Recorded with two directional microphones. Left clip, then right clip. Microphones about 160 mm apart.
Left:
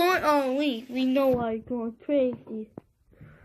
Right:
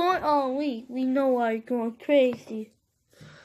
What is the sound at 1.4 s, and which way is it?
A woman's voice, 25° right (ahead or behind).